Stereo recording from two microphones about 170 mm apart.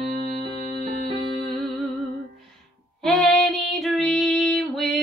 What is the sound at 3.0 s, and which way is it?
Child singing, centre (ahead or behind).